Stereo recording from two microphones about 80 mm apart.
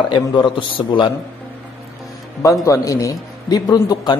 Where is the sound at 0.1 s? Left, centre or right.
Left.